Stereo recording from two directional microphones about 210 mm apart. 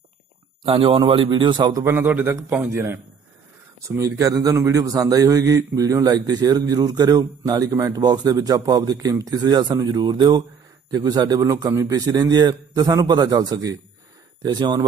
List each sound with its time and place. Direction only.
0.7 s a man's voice: 25° right (ahead or behind)